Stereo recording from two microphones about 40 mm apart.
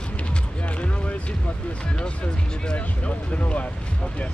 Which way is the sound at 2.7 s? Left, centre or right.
Left.